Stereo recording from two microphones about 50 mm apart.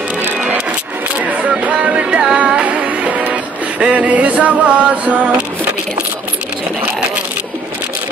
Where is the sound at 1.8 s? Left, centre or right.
Centre.